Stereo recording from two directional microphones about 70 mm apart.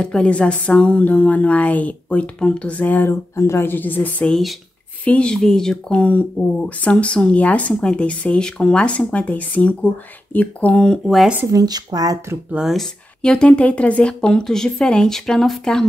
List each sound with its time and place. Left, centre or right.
0.0 s a woman's voice: centre
5.0 s speech: centre
5.9 s a woman's voice: left
11.4 s speech: right
12.6 s speech: centre
13.2 s speech: centre